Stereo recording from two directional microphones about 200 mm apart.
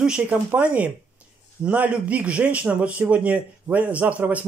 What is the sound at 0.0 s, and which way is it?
Speech, 5° right (ahead or behind).